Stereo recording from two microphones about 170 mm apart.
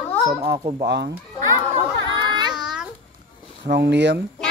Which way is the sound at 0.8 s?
75° right (ahead or behind).